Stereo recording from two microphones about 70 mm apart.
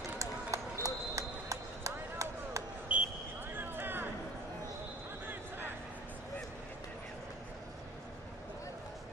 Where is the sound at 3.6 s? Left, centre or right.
Right.